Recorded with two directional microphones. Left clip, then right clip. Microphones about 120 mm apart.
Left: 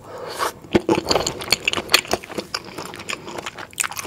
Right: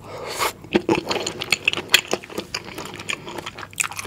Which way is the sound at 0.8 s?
25° left (ahead or behind).